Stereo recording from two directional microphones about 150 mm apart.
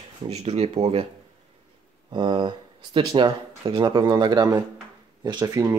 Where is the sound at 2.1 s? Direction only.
30° right (ahead or behind).